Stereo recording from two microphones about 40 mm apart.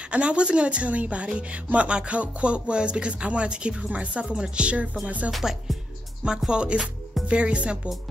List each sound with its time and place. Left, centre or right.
0.0 s speech: right
5.4 s music: centre
6.2 s speech: centre